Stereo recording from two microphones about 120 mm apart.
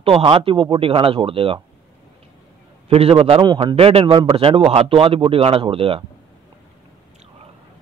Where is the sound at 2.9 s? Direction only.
55° right (ahead or behind).